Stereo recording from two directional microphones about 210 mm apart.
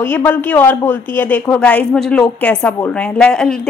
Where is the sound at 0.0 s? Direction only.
10° left (ahead or behind).